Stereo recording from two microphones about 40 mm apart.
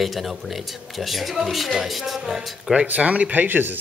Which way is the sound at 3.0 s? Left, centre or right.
Right.